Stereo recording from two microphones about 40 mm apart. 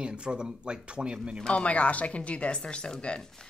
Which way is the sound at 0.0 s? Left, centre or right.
Right.